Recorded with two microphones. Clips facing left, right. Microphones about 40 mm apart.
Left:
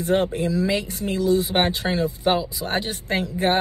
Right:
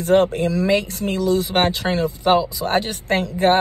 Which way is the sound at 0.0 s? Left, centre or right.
Right.